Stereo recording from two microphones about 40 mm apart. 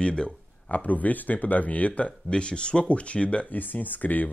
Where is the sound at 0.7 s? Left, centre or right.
Left.